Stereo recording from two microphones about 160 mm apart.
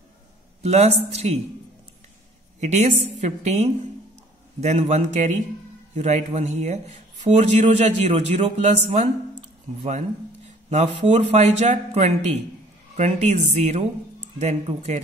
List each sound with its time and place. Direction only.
0.6 s speech: 45° right (ahead or behind)
2.6 s speech: 45° right (ahead or behind)
10.7 s speech: 45° right (ahead or behind)